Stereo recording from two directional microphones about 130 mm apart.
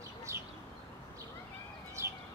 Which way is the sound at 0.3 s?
20° right (ahead or behind).